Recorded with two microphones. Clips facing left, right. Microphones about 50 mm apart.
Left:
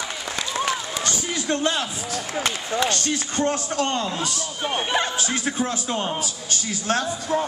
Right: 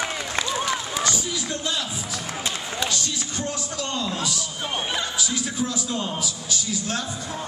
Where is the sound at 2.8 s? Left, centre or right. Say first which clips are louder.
Left 5 dB; left.